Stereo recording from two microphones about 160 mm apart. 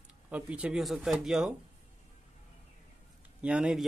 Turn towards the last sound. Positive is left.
turn(degrees=-5)  # may be behind; listen again after turning